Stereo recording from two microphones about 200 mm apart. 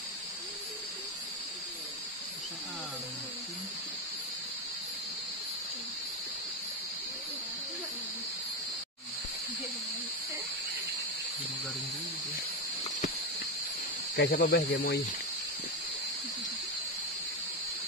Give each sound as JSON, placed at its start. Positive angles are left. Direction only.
{"t": 14.1, "sound": "speech", "side_deg": 50}